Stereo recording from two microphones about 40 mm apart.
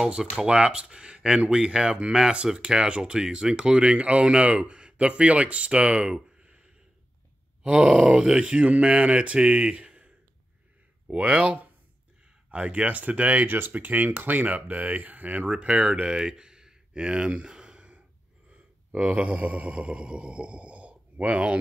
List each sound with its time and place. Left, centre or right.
0.0 s speech: centre
0.5 s speech: right
6.1 s a sound: centre
7.6 s speech: right
13.5 s speech: right